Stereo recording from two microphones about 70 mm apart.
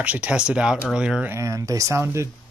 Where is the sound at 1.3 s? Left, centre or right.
Right.